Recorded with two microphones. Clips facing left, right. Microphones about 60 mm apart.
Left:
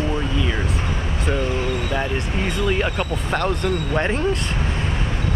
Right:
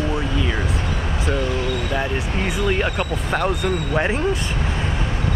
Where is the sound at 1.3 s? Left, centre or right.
Left.